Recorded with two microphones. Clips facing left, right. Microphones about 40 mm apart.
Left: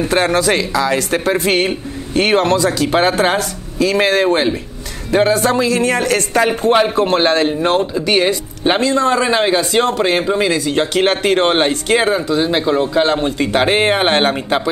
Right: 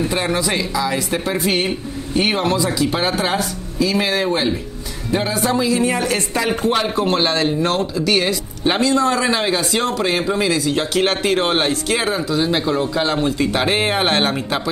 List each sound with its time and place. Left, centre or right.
0.1 s a man's voice: left
2.9 s a man's voice: left
6.4 s speech: left
10.2 s speech: left
10.6 s speech: left